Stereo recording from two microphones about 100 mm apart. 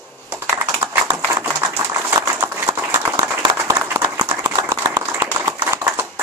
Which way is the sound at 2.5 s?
20° right (ahead or behind).